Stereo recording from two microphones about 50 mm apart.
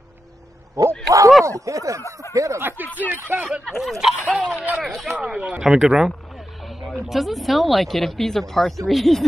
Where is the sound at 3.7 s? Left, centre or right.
Centre.